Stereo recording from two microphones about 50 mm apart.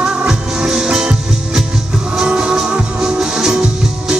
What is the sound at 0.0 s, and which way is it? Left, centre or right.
Music, centre.